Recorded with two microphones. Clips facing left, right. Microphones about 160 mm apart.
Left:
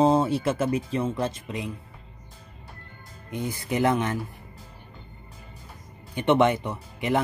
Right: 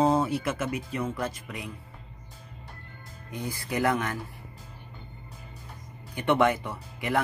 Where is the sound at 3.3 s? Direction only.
20° left (ahead or behind).